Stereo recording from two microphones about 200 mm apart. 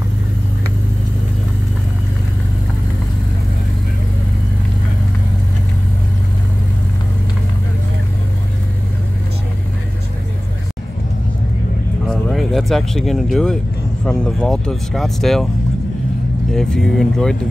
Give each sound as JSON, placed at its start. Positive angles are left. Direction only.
{"t": 12.1, "sound": "a sound", "side_deg": 0}
{"t": 14.0, "sound": "speech", "side_deg": 5}
{"t": 16.5, "sound": "speech", "side_deg": 5}